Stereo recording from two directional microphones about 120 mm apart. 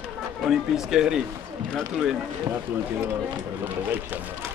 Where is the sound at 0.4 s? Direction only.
Centre (ahead or behind).